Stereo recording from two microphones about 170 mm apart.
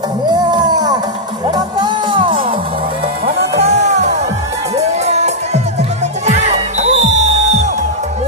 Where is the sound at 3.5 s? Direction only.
40° right (ahead or behind).